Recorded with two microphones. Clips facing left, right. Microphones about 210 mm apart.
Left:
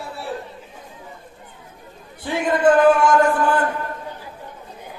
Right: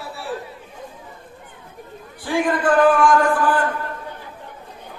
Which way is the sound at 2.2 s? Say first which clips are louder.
Left 2 dB; 25° left (ahead or behind).